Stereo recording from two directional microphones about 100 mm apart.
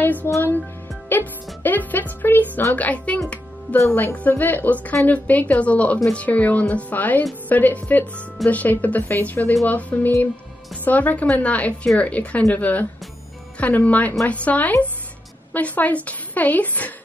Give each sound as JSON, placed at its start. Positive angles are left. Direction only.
{"t": 0.0, "sound": "speech", "side_deg": 15}
{"t": 1.0, "sound": "music", "side_deg": 20}
{"t": 3.7, "sound": "a woman's voice", "side_deg": 20}
{"t": 6.2, "sound": "a woman's voice", "side_deg": 15}